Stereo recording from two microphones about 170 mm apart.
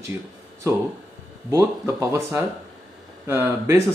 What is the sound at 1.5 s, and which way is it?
Speech, 15° right (ahead or behind).